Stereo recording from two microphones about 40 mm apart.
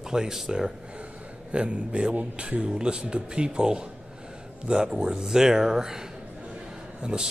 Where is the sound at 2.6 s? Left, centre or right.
Right.